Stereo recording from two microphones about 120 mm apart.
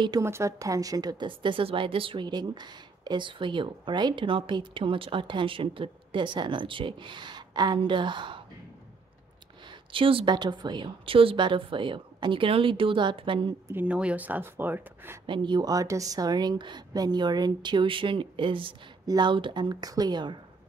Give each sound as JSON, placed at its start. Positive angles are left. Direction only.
{"t": 0.2, "sound": "a woman's voice", "side_deg": -25}
{"t": 9.9, "sound": "a woman's voice", "side_deg": -50}
{"t": 13.7, "sound": "speech", "side_deg": -15}
{"t": 15.2, "sound": "a woman's voice", "side_deg": -40}